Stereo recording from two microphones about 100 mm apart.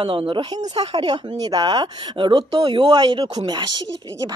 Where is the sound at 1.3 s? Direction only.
40° right (ahead or behind).